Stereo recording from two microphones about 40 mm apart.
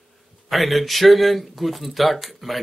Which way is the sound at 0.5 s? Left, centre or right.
Centre.